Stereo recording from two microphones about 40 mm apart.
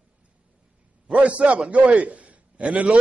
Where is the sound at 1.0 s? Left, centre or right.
Right.